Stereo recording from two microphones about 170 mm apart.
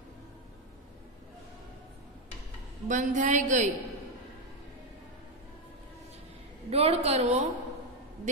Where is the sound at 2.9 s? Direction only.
50° right (ahead or behind).